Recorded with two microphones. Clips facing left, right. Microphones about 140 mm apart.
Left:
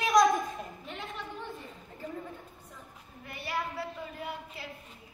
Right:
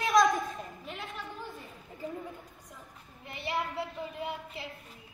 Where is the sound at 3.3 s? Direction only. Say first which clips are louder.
Right 1 dB; 25° right (ahead or behind).